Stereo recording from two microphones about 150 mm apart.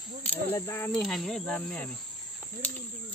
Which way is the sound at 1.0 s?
Centre (ahead or behind).